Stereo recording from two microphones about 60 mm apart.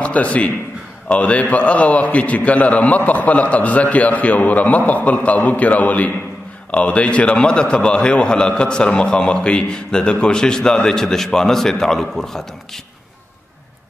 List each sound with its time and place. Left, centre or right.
0.0 s a man's voice: left; by 12.8 s centre